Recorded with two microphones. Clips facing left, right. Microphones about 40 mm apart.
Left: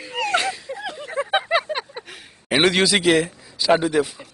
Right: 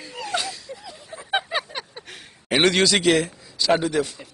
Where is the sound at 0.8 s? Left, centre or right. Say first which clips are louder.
Left 12 dB; left.